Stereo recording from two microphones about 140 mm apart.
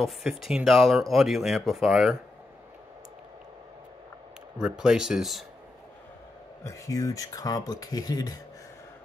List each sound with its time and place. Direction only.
0.0 s speech: centre (ahead or behind)
4.6 s speech: 5° right (ahead or behind)
6.6 s speech: 25° left (ahead or behind)